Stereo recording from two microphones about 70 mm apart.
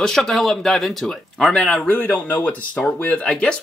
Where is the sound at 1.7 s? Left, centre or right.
Left.